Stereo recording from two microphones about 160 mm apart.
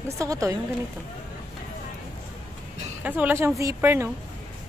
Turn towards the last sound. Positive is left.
turn(degrees=-15)  # may be behind; listen again after turning